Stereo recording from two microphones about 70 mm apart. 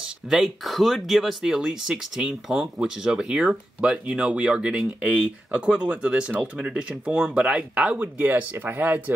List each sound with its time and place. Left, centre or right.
0.3 s speech: centre; by 9.1 s right